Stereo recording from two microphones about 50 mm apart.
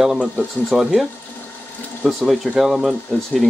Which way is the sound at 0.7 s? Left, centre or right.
Centre.